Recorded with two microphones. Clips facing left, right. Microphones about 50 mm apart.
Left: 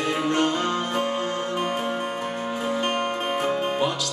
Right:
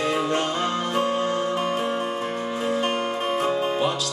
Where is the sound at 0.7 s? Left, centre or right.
Left.